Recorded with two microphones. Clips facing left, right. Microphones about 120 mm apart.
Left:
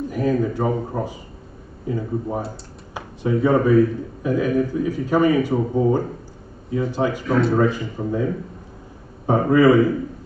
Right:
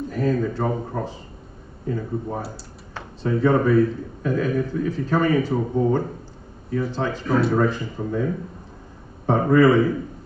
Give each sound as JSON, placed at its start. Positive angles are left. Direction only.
{"t": 0.1, "sound": "a man's voice", "side_deg": 10}
{"t": 7.3, "sound": "speech", "side_deg": 0}
{"t": 8.0, "sound": "a man's voice", "side_deg": 10}
{"t": 9.2, "sound": "a man's voice", "side_deg": 10}